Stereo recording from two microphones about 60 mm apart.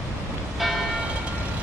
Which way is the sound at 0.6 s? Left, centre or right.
Centre.